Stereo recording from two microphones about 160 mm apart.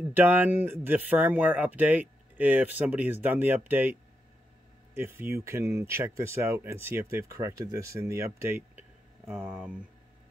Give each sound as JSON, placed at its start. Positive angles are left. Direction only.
{"t": 0.1, "sound": "speech", "side_deg": -10}